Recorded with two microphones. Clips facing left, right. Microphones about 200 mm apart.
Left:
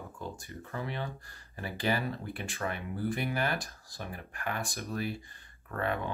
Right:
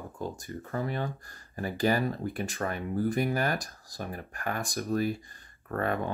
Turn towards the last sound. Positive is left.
turn(degrees=-45)  # may be behind; listen again after turning